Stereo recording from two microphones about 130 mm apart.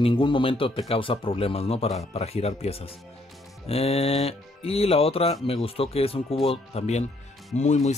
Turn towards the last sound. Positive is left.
turn(degrees=65)  # may be behind; listen again after turning